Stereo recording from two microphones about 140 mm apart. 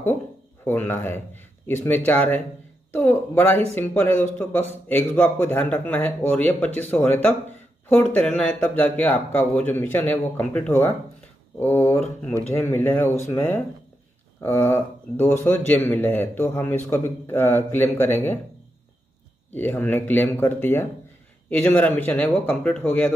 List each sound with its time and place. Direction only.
0.7 s speech: 15° left (ahead or behind)
19.5 s speech: 15° left (ahead or behind)